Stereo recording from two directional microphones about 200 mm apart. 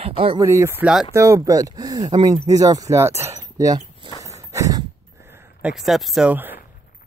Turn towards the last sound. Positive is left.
turn(degrees=-10)  # may be behind; listen again after turning